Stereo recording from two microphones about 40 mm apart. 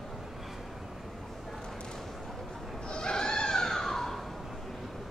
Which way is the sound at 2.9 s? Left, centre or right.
Left.